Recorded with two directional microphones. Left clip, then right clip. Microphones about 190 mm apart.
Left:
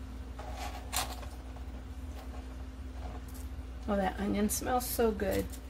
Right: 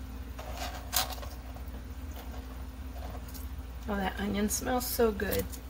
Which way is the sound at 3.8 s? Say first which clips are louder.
Left 1 dB; 30° left (ahead or behind).